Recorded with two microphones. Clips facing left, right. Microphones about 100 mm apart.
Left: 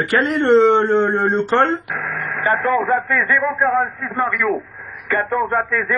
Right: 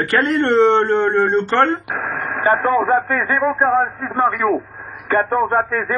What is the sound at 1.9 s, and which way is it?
Radio, 30° right (ahead or behind).